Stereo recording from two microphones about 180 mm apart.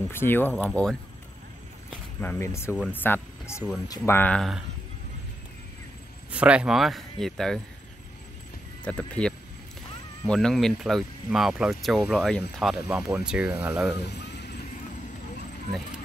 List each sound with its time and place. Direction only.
0.1 s speech: 10° left (ahead or behind)
6.3 s speech: 5° right (ahead or behind)
8.8 s speech: 5° left (ahead or behind)
14.1 s a sound: 70° left (ahead or behind)